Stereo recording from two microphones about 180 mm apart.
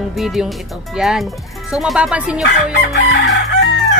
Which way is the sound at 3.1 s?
75° left (ahead or behind).